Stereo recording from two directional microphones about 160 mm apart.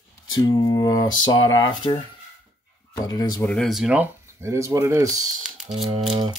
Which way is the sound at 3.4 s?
5° left (ahead or behind).